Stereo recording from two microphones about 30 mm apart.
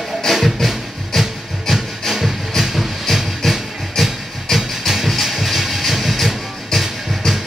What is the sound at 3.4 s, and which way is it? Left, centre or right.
Music, centre.